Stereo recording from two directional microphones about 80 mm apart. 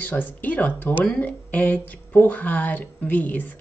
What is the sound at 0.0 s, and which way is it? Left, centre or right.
A woman's voice, left.